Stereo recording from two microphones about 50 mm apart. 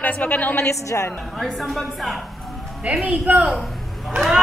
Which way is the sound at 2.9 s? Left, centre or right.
Right.